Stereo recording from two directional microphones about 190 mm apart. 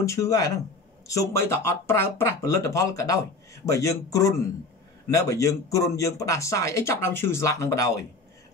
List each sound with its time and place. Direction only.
0.0 s speech: 15° left (ahead or behind)